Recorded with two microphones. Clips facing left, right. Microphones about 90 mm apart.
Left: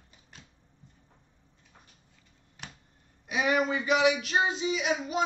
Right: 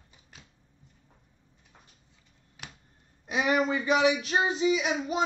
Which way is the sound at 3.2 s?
35° right (ahead or behind).